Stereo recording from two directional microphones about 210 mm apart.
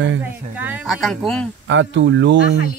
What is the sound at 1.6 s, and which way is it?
Speech, 60° right (ahead or behind).